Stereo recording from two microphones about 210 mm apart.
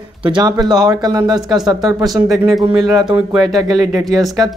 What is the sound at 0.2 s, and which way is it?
Speech, 20° right (ahead or behind).